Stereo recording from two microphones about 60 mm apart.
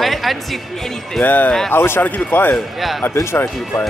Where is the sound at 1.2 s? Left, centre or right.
Left.